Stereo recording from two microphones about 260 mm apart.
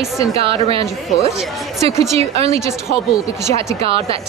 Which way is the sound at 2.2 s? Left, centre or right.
Right.